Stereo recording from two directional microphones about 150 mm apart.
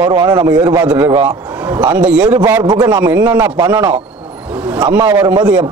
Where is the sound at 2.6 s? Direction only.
30° right (ahead or behind).